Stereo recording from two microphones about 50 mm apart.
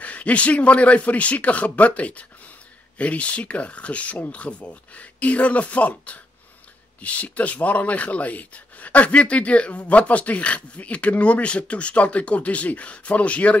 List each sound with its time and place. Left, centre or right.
0.0 s speech: left